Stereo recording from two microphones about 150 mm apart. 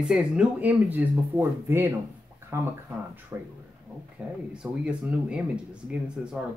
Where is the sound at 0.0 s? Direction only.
5° right (ahead or behind).